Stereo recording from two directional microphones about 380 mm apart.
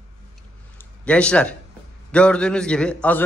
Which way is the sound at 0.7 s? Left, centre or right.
Centre.